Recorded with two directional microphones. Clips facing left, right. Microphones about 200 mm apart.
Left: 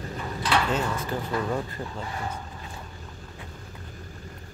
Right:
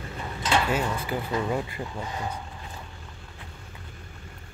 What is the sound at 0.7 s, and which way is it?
Speech, 10° right (ahead or behind).